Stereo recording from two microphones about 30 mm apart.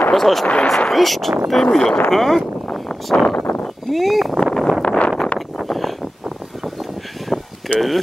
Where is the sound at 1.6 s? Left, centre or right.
Centre.